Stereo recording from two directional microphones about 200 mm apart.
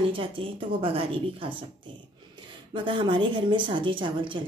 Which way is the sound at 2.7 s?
25° right (ahead or behind).